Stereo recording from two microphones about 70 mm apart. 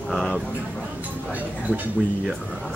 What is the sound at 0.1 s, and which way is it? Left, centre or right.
Speech, centre.